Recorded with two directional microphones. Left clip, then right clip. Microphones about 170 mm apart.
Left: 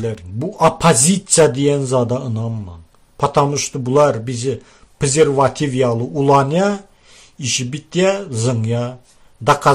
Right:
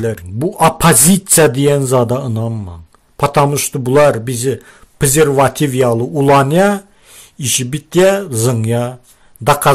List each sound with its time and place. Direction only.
0.0 s speech: 30° right (ahead or behind)